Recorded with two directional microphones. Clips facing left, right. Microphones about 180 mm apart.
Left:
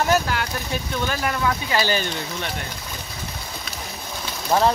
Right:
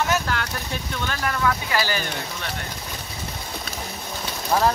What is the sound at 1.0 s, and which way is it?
Speech, 20° left (ahead or behind).